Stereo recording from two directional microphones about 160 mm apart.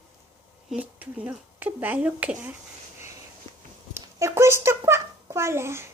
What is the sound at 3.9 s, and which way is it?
A child's voice, 15° right (ahead or behind).